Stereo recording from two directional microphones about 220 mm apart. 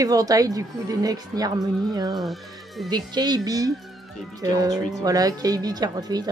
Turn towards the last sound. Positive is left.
turn(degrees=-15)  # may be behind; listen again after turning